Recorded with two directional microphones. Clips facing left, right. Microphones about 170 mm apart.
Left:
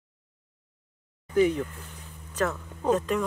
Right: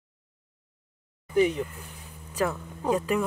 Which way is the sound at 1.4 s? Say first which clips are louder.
Left 1 dB; 15° right (ahead or behind).